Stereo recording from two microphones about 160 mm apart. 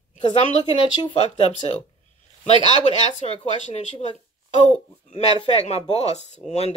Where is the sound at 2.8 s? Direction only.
40° left (ahead or behind).